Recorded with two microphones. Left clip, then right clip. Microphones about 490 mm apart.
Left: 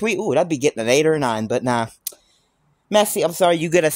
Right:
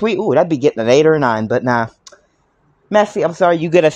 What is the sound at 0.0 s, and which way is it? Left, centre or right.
Speech, left.